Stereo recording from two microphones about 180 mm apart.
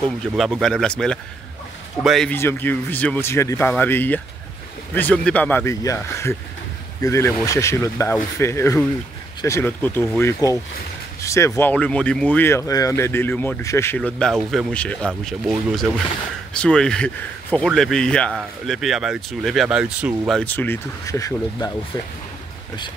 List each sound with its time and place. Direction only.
0.0 s speech: 5° left (ahead or behind)
2.3 s speech: 15° left (ahead or behind); by 20.3 s 5° right (ahead or behind)
20.3 s speech: 10° left (ahead or behind)